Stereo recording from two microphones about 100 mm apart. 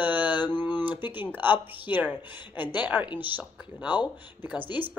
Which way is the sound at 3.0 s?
50° left (ahead or behind).